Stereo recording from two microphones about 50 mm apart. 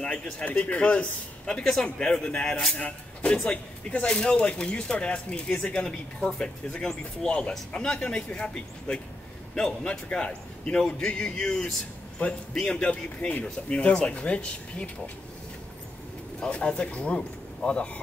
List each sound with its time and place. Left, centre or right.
0.0 s speech: centre
0.5 s a man's voice: left
16.3 s speech: centre